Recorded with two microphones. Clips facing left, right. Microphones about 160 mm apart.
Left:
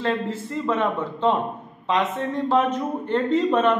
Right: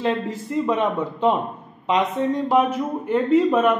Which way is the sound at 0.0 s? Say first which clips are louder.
Right 1 dB; 15° right (ahead or behind).